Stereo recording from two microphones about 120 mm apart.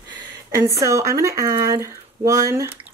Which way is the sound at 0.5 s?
25° right (ahead or behind).